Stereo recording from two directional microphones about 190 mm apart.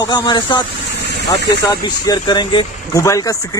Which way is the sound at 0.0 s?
20° left (ahead or behind).